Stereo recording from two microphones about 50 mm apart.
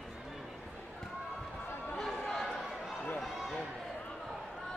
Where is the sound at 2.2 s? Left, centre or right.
Centre.